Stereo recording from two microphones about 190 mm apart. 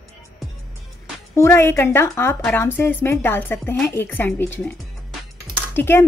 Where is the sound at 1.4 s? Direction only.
15° left (ahead or behind).